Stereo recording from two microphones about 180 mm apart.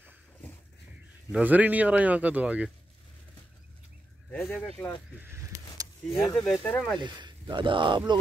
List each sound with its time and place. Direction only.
1.3 s speech: 10° right (ahead or behind)
4.3 s speech: 10° left (ahead or behind)
5.1 s a sound: 10° right (ahead or behind)
6.2 s speech: 5° left (ahead or behind)
7.0 s speech: 25° right (ahead or behind)